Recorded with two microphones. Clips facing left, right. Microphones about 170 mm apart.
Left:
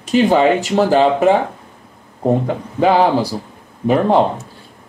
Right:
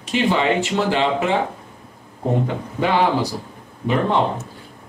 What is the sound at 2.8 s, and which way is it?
Speech, 40° left (ahead or behind).